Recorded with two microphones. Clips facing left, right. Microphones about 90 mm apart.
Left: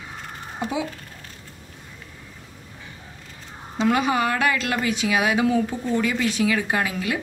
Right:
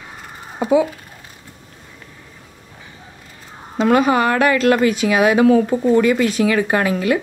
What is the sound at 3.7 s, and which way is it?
A woman's voice, 50° right (ahead or behind).